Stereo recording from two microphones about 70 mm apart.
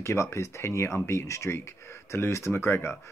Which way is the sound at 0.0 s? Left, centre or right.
Left.